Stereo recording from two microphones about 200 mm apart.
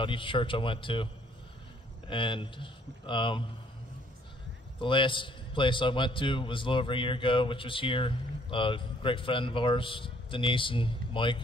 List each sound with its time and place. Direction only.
0.0 s a man's voice: 25° left (ahead or behind)
2.0 s a man's voice: 25° left (ahead or behind)
4.7 s a man's voice: 25° left (ahead or behind)